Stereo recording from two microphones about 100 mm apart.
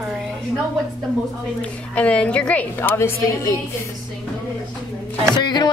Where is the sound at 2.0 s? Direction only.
15° left (ahead or behind).